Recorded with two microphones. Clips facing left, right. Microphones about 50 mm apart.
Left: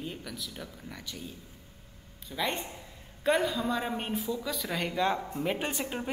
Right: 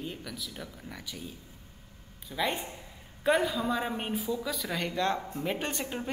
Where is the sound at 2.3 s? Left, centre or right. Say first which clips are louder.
Right 1 dB; centre.